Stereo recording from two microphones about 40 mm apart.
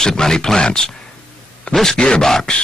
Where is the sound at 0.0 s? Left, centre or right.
Centre.